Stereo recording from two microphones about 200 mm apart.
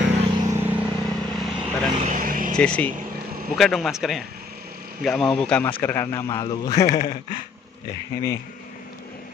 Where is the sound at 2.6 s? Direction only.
5° left (ahead or behind).